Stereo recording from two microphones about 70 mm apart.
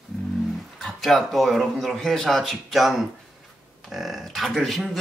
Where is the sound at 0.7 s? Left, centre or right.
Centre.